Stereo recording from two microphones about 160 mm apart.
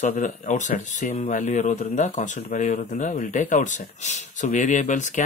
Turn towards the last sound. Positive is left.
turn(degrees=50)  # may be behind; listen again after turning